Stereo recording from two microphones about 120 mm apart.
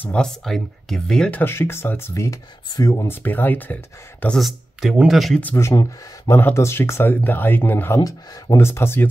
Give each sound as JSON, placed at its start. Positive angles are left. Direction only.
{"t": 0.0, "sound": "speech", "side_deg": 10}
{"t": 1.4, "sound": "speech", "side_deg": 20}
{"t": 3.1, "sound": "speech", "side_deg": 15}
{"t": 4.4, "sound": "speech", "side_deg": 0}
{"t": 5.4, "sound": "speech", "side_deg": 20}